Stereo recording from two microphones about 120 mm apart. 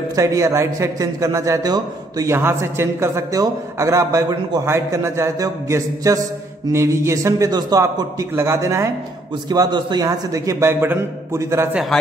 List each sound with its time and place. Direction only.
0.1 s a man's voice: 25° right (ahead or behind)
2.3 s a man's voice: 20° right (ahead or behind)
9.5 s a man's voice: 35° right (ahead or behind); by 11.7 s 20° right (ahead or behind)
11.7 s a man's voice: centre (ahead or behind)